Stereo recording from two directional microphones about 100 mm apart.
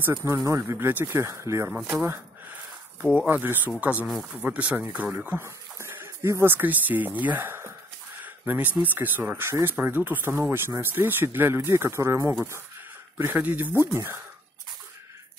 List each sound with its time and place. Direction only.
0.0 s speech: 25° right (ahead or behind)
1.7 s speech: 10° right (ahead or behind)
2.0 s a sound: 20° right (ahead or behind)
3.8 s speech: 15° right (ahead or behind)
8.2 s a sound: 15° right (ahead or behind)
8.8 s speech: 20° right (ahead or behind)